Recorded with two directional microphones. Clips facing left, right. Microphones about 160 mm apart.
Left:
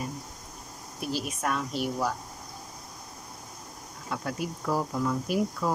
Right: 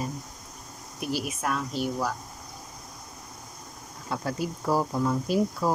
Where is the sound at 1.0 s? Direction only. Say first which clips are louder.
Right 2 dB; 10° right (ahead or behind).